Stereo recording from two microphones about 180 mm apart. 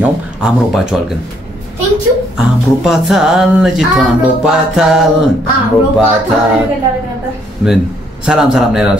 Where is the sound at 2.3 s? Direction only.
5° right (ahead or behind).